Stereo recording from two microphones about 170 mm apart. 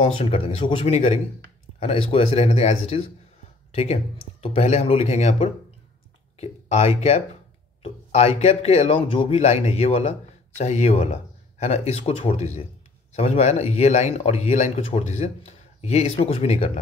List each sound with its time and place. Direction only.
0.0 s speech: 40° left (ahead or behind)